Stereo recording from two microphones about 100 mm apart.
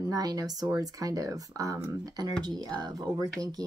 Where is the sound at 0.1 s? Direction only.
40° right (ahead or behind).